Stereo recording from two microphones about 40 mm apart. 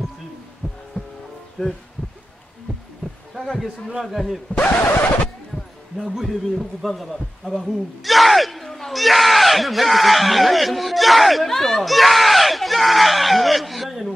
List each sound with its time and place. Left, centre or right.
1.0 s music: left
1.6 s a man's voice: centre
3.0 s a sound: left
3.3 s a man's voice: centre
4.6 s speech: left
6.8 s a man's voice: centre